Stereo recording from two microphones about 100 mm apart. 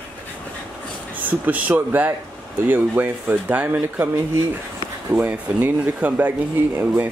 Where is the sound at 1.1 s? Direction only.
15° right (ahead or behind).